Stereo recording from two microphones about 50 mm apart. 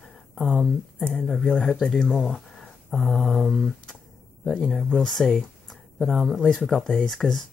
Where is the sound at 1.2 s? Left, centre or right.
Centre.